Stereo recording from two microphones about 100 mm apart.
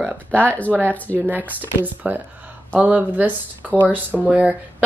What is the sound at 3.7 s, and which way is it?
Speech, 15° left (ahead or behind).